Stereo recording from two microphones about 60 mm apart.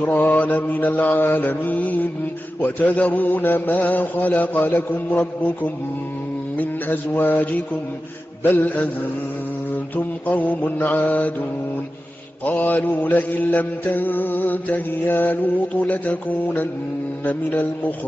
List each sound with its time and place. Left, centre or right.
0.0 s mantra: left
6.5 s mantra: left
9.9 s mantra: left
12.4 s mantra: left